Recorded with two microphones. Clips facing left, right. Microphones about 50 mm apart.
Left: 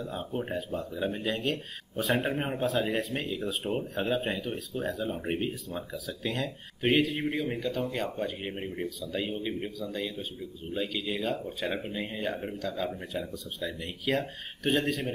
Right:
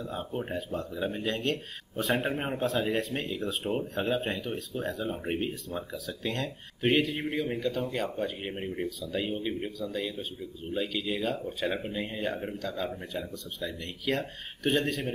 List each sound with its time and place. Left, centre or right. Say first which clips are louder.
0.0 s speech: even; centre